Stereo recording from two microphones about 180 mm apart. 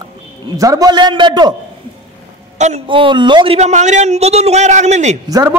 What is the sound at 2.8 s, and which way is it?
Speech, 25° right (ahead or behind).